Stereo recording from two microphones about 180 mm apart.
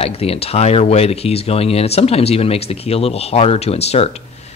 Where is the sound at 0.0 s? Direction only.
35° left (ahead or behind).